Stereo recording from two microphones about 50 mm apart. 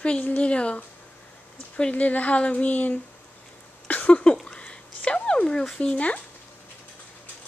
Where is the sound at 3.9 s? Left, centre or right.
Left.